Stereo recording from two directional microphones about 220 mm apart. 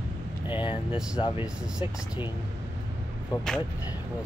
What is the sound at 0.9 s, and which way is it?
Speech, 5° right (ahead or behind).